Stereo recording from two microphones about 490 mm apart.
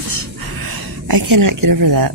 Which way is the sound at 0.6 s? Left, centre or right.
Right.